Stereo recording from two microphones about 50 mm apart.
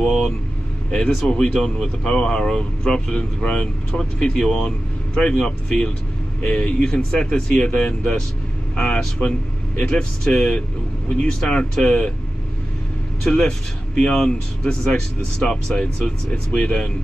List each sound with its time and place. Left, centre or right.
0.8 s speech: centre
13.4 s speech: centre